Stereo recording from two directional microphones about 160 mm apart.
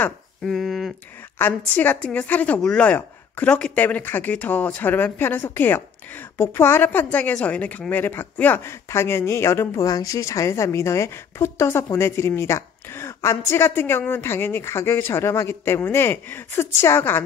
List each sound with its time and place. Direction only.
0.5 s speech: centre (ahead or behind)
1.7 s a woman's voice: 10° left (ahead or behind)